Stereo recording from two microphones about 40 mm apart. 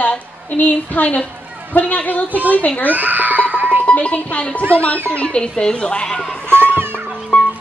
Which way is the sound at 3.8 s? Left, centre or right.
Left.